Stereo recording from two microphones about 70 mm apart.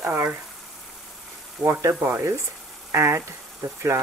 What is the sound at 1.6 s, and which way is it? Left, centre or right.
Speech, right.